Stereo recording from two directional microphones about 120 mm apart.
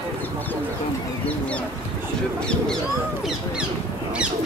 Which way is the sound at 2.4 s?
10° left (ahead or behind).